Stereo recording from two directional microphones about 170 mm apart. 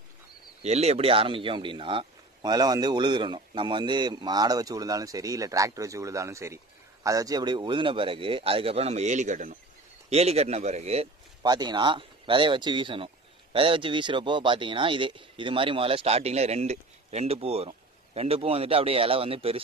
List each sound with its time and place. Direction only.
0.6 s speech: 40° right (ahead or behind)
10.0 s speech: 40° right (ahead or behind)
11.4 s speech: 25° right (ahead or behind)